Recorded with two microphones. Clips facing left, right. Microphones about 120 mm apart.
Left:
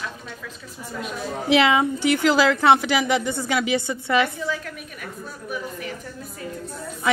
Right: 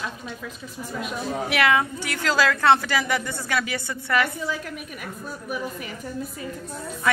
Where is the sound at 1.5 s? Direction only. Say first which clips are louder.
Left 5 dB; 20° left (ahead or behind).